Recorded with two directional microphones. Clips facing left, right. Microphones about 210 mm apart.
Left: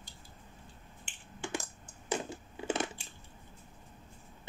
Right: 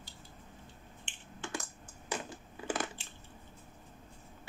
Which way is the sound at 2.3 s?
25° left (ahead or behind).